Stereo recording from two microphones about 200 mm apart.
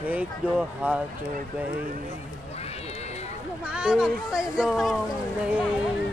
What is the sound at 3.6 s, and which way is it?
Speech, 5° right (ahead or behind).